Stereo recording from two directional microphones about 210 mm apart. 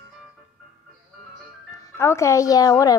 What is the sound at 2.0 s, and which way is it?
A woman's voice, 15° left (ahead or behind).